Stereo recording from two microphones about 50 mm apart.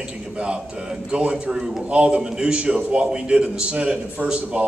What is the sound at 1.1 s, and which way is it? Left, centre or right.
A man's voice, centre.